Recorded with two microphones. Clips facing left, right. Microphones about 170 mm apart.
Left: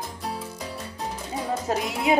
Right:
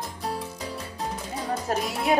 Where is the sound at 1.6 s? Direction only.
20° left (ahead or behind).